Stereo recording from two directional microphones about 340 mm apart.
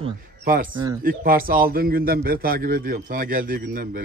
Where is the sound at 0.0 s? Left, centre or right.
Right.